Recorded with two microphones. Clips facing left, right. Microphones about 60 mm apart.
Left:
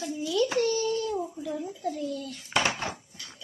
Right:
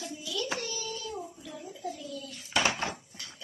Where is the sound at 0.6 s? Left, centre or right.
Left.